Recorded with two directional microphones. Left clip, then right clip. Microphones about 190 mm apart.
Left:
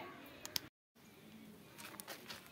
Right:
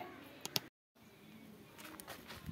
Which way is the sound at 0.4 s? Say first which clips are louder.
Right 4 dB; 10° right (ahead or behind).